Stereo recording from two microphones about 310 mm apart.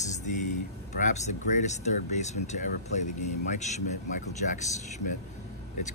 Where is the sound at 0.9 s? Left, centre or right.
Left.